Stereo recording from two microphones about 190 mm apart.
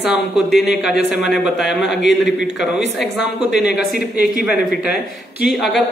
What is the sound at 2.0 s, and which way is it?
Speech, 65° left (ahead or behind).